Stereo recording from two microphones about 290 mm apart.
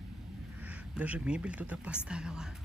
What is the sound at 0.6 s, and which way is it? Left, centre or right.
Speech, centre.